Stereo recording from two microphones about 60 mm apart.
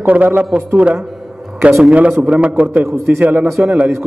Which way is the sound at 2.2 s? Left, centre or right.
Centre.